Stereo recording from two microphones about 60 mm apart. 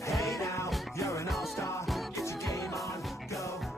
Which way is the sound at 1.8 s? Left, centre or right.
Centre.